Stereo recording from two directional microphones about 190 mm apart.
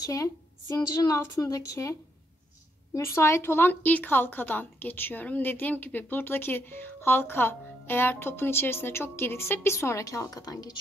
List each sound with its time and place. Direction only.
0.0 s speech: 15° left (ahead or behind)